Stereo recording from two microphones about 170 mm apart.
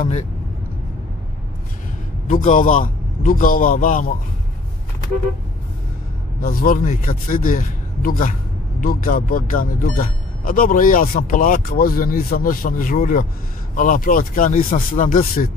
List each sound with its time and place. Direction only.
0.0 s a man's voice: 45° left (ahead or behind)
2.2 s a man's voice: 50° left (ahead or behind)
6.4 s a man's voice: 60° left (ahead or behind)